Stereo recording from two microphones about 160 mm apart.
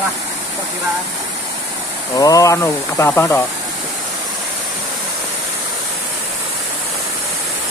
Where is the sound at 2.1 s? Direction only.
20° left (ahead or behind).